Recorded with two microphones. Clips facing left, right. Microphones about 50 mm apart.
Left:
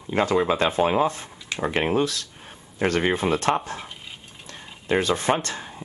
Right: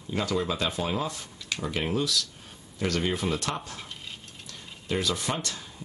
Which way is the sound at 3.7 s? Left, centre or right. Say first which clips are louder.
Left 7 dB; left.